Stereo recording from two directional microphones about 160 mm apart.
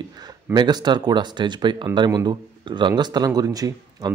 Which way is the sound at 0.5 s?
25° right (ahead or behind).